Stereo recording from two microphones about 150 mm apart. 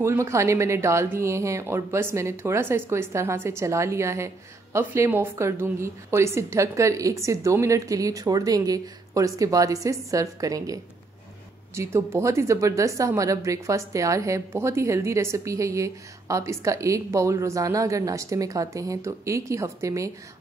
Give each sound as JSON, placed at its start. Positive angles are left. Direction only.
{"t": 0.0, "sound": "speech", "side_deg": -20}